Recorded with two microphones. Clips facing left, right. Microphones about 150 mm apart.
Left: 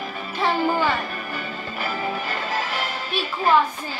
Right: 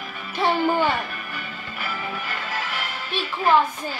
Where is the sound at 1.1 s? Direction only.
35° left (ahead or behind).